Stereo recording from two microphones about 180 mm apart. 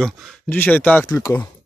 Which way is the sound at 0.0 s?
10° left (ahead or behind).